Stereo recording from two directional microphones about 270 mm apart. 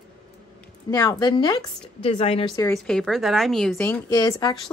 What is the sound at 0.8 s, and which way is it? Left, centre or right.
A woman's voice, centre.